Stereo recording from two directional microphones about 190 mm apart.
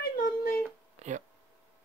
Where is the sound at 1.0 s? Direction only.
35° right (ahead or behind).